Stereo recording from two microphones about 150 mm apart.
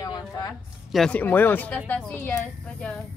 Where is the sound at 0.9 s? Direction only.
5° left (ahead or behind).